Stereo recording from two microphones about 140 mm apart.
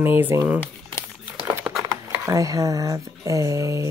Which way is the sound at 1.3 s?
15° right (ahead or behind).